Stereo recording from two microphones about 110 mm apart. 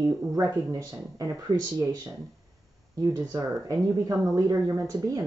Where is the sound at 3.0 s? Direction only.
30° right (ahead or behind).